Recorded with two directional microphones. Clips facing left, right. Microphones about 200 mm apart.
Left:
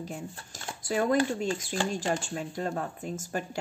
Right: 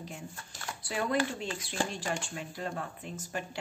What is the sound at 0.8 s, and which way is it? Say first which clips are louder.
Speech: left 5 dB; 45° left (ahead or behind).